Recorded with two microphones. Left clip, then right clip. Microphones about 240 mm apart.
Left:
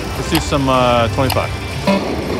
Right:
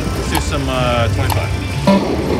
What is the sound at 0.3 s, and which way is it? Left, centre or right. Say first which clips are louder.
Speech: left 6 dB; centre.